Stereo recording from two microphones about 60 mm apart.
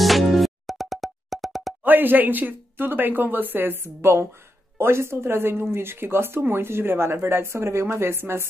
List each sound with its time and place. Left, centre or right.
0.0 s music: centre
1.8 s speech: right